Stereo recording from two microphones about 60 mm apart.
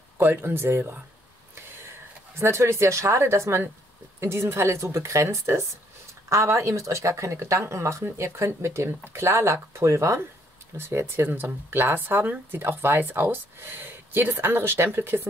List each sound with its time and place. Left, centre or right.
0.2 s speech: right
2.3 s a woman's voice: right
10.8 s speech: right